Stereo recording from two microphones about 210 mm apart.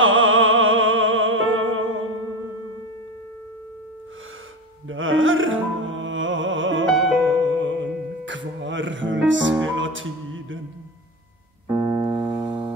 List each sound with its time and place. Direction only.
0.0 s music: 70° right (ahead or behind)
4.8 s music: 70° right (ahead or behind)
12.0 s music: 25° right (ahead or behind)